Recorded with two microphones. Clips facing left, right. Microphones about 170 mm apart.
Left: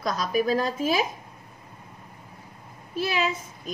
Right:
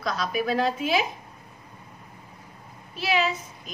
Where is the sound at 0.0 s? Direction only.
45° left (ahead or behind).